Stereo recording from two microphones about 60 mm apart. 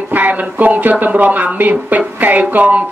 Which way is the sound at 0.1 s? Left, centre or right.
Right.